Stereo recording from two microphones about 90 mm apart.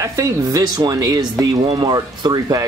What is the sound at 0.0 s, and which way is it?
Speech, 40° right (ahead or behind).